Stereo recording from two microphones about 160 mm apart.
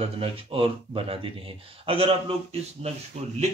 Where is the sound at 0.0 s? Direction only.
35° right (ahead or behind).